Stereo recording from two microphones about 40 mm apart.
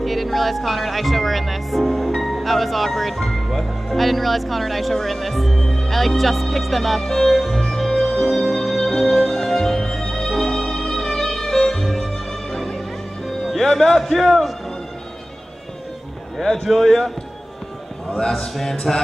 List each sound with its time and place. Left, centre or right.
0.0 s speech: centre
5.6 s a sound: centre
5.9 s music: centre
14.0 s speech: centre
16.3 s a man's voice: centre
18.3 s a sound: centre